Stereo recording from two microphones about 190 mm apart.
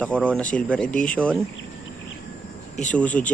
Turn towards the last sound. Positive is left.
turn(degrees=10)  # may be behind; listen again after turning